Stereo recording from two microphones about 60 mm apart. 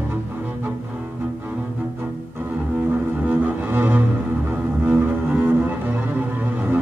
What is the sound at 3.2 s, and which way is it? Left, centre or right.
Cello, right.